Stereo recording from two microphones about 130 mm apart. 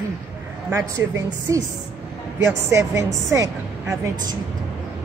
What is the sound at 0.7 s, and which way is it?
Speech, 25° right (ahead or behind).